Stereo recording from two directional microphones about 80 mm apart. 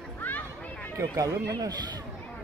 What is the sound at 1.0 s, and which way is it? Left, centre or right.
Speech, right.